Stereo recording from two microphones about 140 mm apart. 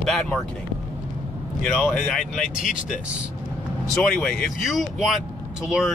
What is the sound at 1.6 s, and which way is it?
Speech, 5° left (ahead or behind).